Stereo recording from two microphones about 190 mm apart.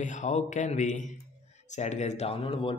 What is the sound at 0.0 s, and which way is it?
A man's voice, 40° left (ahead or behind).